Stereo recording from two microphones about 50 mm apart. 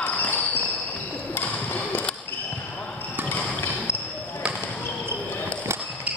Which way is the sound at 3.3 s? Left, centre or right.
Left.